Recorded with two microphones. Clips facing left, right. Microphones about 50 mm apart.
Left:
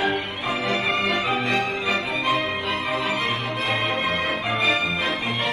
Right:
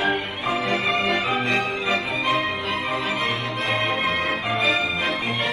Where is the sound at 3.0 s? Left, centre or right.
Left.